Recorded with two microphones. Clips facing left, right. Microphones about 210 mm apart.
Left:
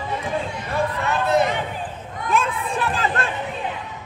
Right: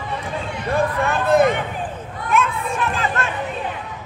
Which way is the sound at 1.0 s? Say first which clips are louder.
Right 4 dB; 50° right (ahead or behind).